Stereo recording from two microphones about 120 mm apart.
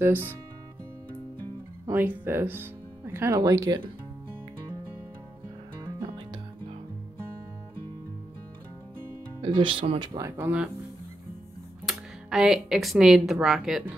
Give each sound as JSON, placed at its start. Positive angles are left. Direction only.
{"t": 0.0, "sound": "speech", "side_deg": -15}
{"t": 1.9, "sound": "speech", "side_deg": -15}
{"t": 9.4, "sound": "speech", "side_deg": -45}
{"t": 10.1, "sound": "speech", "side_deg": -20}
{"t": 11.8, "sound": "speech", "side_deg": -5}